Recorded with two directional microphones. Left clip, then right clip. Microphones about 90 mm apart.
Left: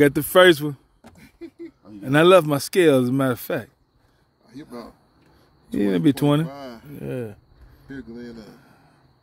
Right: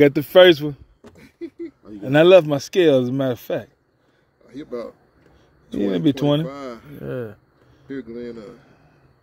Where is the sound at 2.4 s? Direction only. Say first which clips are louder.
Right 1 dB; 75° left (ahead or behind); by 3.6 s 90° left.